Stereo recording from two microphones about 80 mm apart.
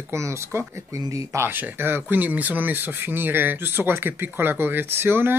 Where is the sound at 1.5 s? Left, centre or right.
Right.